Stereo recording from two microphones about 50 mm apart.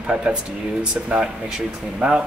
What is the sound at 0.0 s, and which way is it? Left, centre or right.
Speech, right.